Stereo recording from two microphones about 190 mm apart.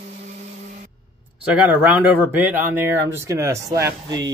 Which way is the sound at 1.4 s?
5° right (ahead or behind).